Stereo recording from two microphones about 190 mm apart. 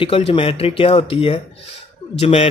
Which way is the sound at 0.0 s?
30° left (ahead or behind).